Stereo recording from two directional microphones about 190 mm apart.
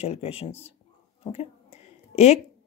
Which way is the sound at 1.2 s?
35° left (ahead or behind).